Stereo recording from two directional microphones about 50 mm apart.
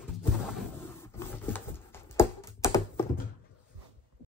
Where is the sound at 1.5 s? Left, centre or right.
Left.